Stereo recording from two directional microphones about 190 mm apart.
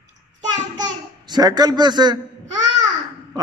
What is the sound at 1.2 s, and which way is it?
Speech, 20° right (ahead or behind).